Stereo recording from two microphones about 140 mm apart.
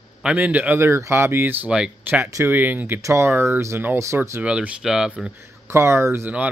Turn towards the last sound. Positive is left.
turn(degrees=-15)  # may be behind; listen again after turning